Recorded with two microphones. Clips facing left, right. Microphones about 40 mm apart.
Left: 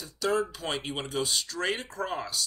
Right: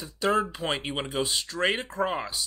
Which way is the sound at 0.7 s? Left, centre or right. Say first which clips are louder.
Right 3 dB; right.